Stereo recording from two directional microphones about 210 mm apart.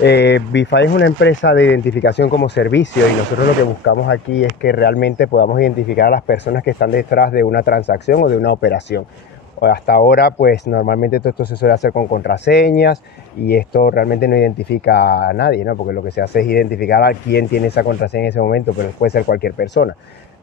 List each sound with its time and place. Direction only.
0.0 s speech: 55° left (ahead or behind)